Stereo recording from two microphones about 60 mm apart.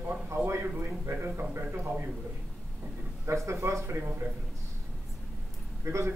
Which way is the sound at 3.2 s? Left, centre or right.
Right.